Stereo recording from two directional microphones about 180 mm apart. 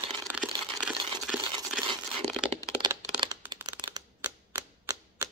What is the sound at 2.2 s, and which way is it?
Crack, centre (ahead or behind).